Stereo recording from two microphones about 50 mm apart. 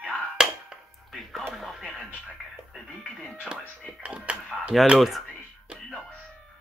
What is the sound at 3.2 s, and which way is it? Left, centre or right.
Music, centre.